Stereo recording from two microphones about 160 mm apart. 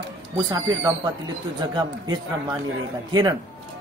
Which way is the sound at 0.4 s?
25° right (ahead or behind).